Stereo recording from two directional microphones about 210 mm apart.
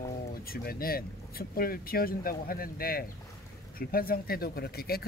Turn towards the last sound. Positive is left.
turn(degrees=45)  # may be behind; listen again after turning